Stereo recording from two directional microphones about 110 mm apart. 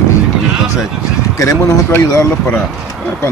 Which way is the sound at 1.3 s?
25° left (ahead or behind).